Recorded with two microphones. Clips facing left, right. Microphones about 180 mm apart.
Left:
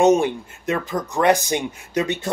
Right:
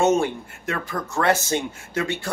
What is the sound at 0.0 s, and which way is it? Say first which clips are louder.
Speech: left 4 dB; 15° left (ahead or behind).